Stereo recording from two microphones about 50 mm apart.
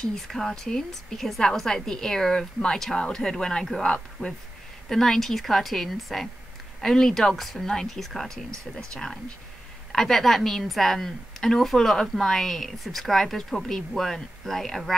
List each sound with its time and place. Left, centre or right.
0.0 s a woman's voice: centre
4.8 s a woman's voice: centre